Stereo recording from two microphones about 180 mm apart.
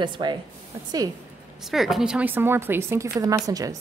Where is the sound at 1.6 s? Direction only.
Centre (ahead or behind).